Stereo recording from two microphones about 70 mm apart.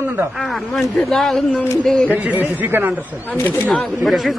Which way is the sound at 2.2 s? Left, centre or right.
Right.